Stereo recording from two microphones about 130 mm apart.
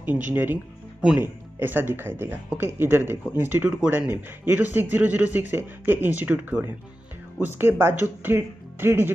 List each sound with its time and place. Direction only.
0.0 s speech: 15° right (ahead or behind)